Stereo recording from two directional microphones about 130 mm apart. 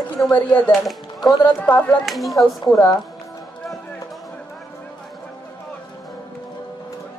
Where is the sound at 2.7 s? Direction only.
25° left (ahead or behind).